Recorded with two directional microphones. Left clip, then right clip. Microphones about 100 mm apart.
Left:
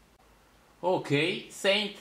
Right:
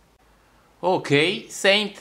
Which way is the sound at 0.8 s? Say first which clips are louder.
Right 7 dB; 45° right (ahead or behind).